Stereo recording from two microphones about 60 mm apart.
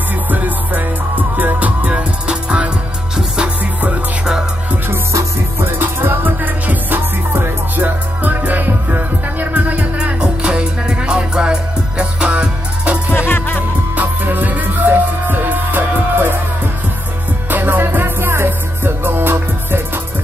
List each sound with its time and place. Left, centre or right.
0.3 s music: right
5.6 s music: right
13.1 s music: left
13.9 s music: right
17.5 s music: right